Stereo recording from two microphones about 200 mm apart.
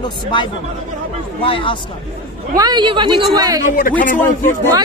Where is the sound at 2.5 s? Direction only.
20° right (ahead or behind).